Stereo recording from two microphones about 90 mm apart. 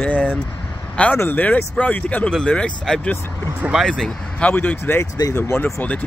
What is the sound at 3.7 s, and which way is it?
Speech, 5° right (ahead or behind).